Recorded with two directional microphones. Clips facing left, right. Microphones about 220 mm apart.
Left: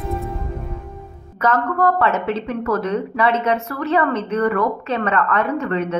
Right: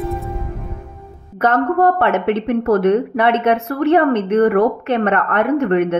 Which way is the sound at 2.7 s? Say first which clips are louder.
Right 7 dB; 60° right (ahead or behind).